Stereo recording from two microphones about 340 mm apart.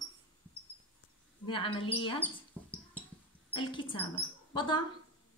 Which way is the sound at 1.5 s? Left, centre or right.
Centre.